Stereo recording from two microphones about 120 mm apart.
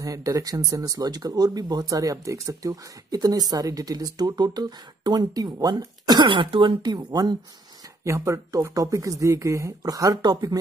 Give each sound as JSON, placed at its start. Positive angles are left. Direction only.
{"t": 0.0, "sound": "speech", "side_deg": -30}
{"t": 8.0, "sound": "speech", "side_deg": -25}